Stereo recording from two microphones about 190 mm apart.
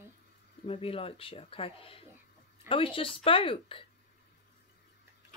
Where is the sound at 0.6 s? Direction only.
30° left (ahead or behind).